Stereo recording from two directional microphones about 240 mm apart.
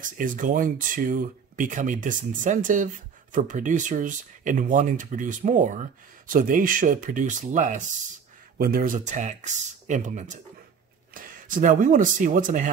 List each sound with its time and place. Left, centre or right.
0.0 s speech: right